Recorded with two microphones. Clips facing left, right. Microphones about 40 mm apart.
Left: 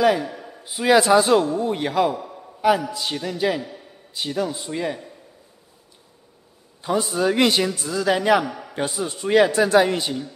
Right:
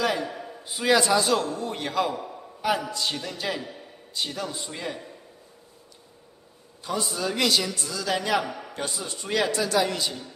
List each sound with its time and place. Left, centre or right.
0.0 s a man's voice: centre
0.9 s a man's voice: centre
2.1 s a sound: centre
2.9 s a man's voice: centre
6.8 s a man's voice: left
8.5 s a man's voice: centre
8.7 s a man's voice: centre